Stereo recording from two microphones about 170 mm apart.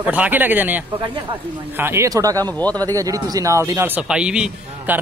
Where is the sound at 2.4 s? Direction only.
10° left (ahead or behind).